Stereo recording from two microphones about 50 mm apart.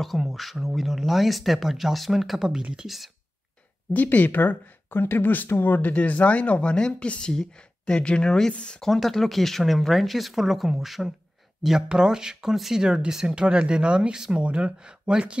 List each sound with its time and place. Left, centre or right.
0.0 s speech: centre
3.9 s speech: left
8.8 s speech: centre